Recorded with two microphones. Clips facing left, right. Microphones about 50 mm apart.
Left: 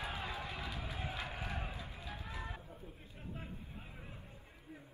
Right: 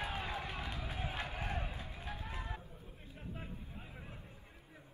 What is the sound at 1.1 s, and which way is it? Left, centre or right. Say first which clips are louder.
Crowd: right 2 dB; right.